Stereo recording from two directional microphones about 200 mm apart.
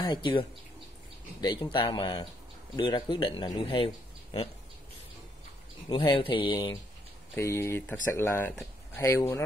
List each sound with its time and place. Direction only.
0.0 s speech: 20° left (ahead or behind)
5.9 s speech: 25° left (ahead or behind)
7.3 s speech: 15° left (ahead or behind)